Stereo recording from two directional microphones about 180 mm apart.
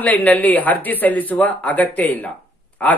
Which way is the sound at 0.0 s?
10° left (ahead or behind).